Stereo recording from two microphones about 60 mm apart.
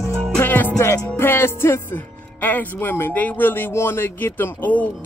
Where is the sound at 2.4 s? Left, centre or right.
Left.